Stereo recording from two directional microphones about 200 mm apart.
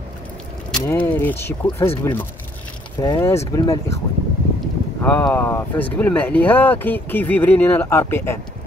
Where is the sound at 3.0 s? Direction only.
15° left (ahead or behind).